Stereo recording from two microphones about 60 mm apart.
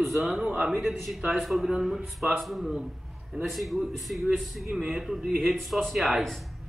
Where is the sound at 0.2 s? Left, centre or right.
Centre.